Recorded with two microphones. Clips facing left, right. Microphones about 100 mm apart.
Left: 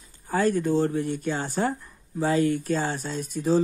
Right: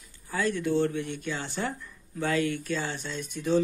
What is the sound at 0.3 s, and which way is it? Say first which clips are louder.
Speech: left 5 dB; 45° left (ahead or behind).